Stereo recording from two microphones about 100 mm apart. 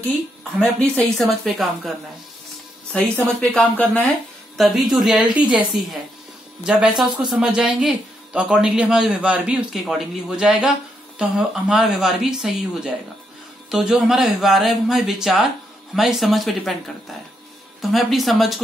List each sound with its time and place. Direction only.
0.4 s speech: 5° left (ahead or behind)
2.9 s speech: 15° left (ahead or behind)
4.6 s speech: centre (ahead or behind)
6.6 s speech: 5° right (ahead or behind)
17.9 s speech: centre (ahead or behind)